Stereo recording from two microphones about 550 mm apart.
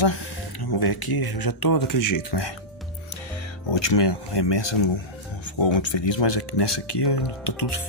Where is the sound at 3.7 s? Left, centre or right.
Left.